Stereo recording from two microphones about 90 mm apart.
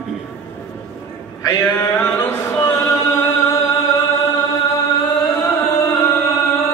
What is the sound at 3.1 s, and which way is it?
Chant, 35° left (ahead or behind).